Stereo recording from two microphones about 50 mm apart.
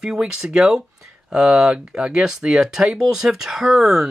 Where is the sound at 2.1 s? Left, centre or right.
Centre.